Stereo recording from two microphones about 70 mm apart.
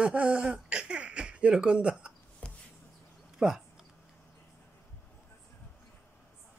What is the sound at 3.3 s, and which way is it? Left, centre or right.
Speech, centre.